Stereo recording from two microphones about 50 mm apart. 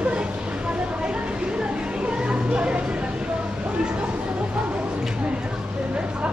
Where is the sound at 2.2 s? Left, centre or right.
Right.